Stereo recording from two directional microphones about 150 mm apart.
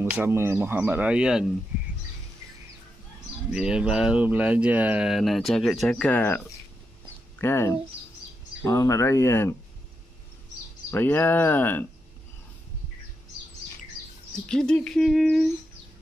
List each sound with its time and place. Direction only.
0.0 s speech: 15° right (ahead or behind)
3.5 s speech: 5° right (ahead or behind); by 9.6 s 15° left (ahead or behind)
10.9 s speech: 15° left (ahead or behind)
14.5 s speech: 5° left (ahead or behind)